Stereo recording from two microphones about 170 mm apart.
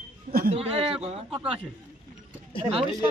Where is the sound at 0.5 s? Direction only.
35° right (ahead or behind).